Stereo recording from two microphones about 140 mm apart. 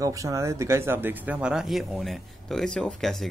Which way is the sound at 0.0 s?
25° right (ahead or behind).